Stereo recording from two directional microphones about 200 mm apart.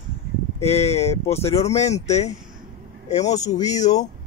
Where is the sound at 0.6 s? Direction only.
30° left (ahead or behind).